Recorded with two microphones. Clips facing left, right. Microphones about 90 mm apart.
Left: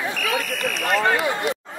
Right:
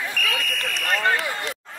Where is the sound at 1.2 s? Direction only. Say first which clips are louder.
Left 6 dB; 20° left (ahead or behind).